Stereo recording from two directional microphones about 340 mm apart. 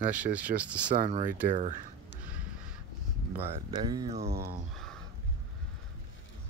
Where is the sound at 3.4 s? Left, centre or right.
Centre.